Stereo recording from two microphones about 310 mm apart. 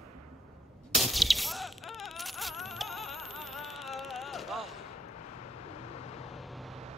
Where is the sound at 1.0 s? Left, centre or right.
Centre.